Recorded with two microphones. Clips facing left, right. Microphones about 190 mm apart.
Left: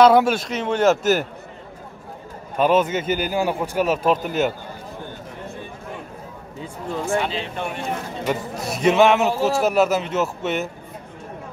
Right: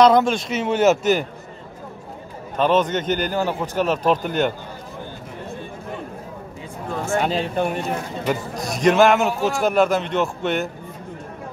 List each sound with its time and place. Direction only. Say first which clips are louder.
0.0 s speech: left 1 dB; 5° left (ahead or behind)
0.5 s speech: right 1 dB; 5° right (ahead or behind)
2.5 s speech: even; 10° left (ahead or behind)
7.2 s speech: right 4 dB; 45° right (ahead or behind)
8.6 s speech: right 1 dB; 5° left (ahead or behind)